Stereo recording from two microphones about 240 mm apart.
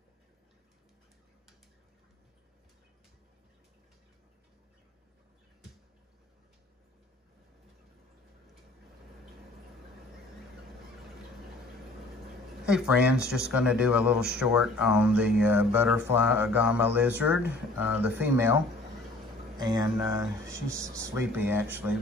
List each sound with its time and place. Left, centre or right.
12.6 s speech: centre